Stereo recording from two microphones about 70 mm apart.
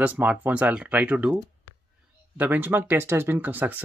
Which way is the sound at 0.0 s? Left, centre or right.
Right.